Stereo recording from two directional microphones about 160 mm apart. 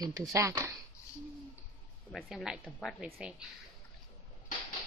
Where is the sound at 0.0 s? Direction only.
20° right (ahead or behind).